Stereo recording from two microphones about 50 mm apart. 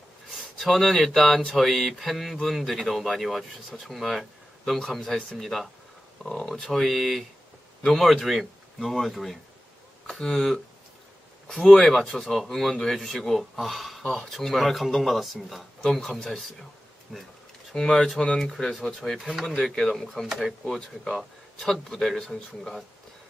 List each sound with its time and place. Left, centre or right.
0.4 s speech: centre
10.0 s speech: centre
19.1 s speech: centre
19.6 s speech: centre
20.6 s speech: centre